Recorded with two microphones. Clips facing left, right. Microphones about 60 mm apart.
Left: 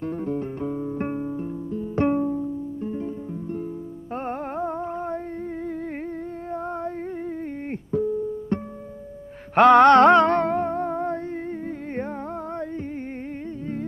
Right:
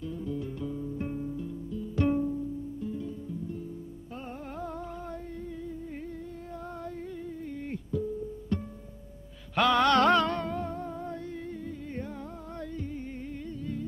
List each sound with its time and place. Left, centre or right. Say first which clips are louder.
0.0 s music: left 8 dB; left
4.6 s music: left 10 dB; left
7.9 s music: left 10 dB; left